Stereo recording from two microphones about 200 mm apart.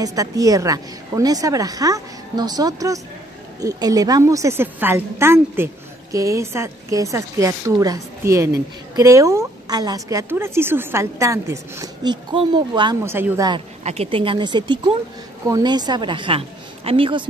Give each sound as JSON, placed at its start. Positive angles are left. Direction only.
{"t": 0.0, "sound": "a woman's voice", "side_deg": -15}
{"t": 13.1, "sound": "a woman's voice", "side_deg": -10}
{"t": 13.8, "sound": "a woman's voice", "side_deg": -30}